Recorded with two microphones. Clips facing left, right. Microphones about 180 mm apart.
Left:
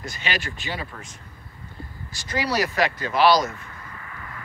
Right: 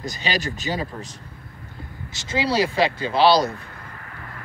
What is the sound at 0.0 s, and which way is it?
Speech, 35° right (ahead or behind).